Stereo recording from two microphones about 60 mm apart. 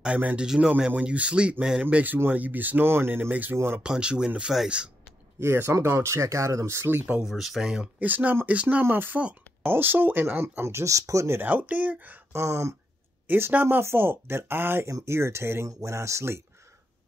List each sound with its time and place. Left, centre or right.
0.4 s speech: centre; by 3.5 s right
3.8 s speech: centre
5.4 s speech: right
7.2 s speech: centre
8.0 s speech: right
8.8 s speech: right
10.6 s speech: right
11.4 s speech: right
12.3 s speech: right
13.3 s speech: right